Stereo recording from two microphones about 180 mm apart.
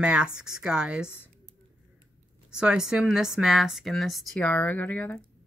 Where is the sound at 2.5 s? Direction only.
5° right (ahead or behind).